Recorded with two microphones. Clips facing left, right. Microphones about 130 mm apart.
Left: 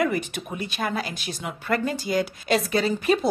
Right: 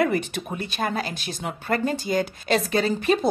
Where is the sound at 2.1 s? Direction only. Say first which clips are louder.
Left 1 dB; 45° right (ahead or behind).